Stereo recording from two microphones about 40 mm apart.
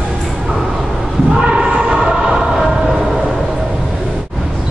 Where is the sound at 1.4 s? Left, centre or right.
Centre.